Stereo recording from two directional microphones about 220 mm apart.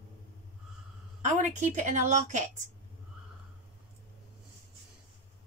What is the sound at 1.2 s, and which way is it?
A woman's voice, 35° right (ahead or behind).